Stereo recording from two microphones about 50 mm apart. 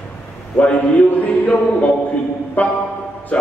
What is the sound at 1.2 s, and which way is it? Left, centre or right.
A man's voice, left.